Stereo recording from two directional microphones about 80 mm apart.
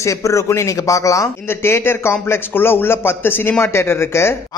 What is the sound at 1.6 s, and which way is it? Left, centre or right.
A man's voice, left.